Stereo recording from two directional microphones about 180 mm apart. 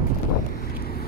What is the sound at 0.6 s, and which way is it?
Wind, 60° left (ahead or behind).